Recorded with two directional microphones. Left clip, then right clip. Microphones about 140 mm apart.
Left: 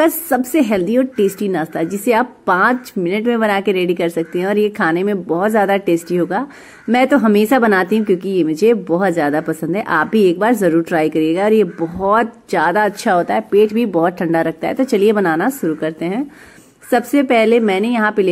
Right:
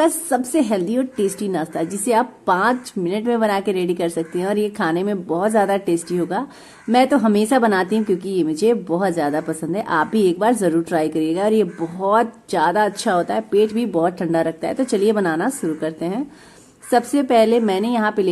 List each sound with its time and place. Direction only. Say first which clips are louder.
0.0 s speech: left 3 dB; 15° left (ahead or behind)